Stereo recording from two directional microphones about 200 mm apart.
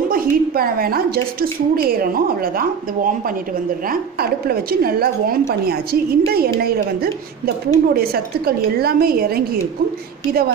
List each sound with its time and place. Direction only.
0.1 s a woman's voice: 45° right (ahead or behind)